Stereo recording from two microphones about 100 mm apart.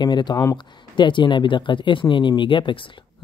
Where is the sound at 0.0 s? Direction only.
45° left (ahead or behind).